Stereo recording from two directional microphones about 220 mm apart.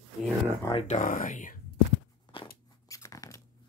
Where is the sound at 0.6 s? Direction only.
25° left (ahead or behind).